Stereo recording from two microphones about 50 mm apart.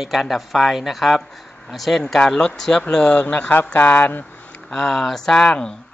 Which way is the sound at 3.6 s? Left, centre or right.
Left.